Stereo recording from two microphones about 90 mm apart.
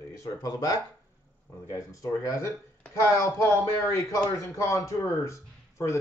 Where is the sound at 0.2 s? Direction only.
40° left (ahead or behind).